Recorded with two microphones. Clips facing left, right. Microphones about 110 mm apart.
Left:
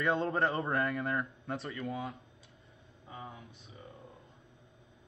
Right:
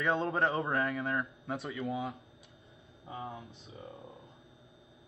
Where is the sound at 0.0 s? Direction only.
Centre (ahead or behind).